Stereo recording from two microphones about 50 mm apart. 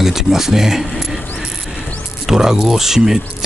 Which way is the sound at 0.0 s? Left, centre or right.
Centre.